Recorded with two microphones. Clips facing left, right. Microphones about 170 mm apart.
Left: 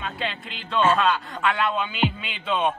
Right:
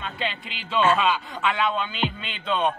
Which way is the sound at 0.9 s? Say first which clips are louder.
Left 1 dB; centre (ahead or behind).